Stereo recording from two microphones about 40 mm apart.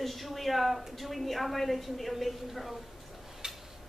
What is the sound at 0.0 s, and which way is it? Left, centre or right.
A woman's voice, centre.